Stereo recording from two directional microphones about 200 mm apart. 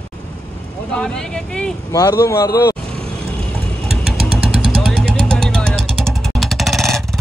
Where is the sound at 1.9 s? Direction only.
15° left (ahead or behind).